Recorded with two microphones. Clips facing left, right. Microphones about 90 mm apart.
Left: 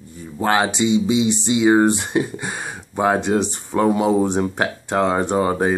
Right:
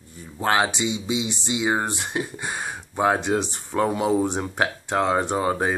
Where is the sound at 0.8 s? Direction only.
20° right (ahead or behind).